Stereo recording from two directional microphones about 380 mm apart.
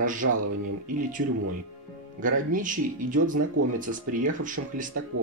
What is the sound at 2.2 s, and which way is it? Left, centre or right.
Speech, right.